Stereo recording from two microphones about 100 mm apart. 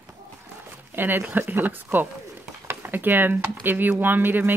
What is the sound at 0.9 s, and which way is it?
Speech, 20° right (ahead or behind).